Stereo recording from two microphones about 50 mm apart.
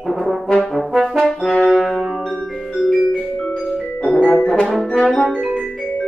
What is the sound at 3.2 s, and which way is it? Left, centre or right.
Music, left.